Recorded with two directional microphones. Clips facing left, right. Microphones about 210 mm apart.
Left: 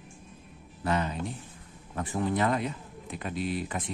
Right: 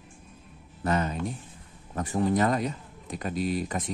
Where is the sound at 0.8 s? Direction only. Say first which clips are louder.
Right 2 dB; 45° right (ahead or behind).